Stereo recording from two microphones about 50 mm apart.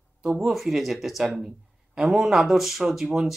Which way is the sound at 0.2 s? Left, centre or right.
Centre.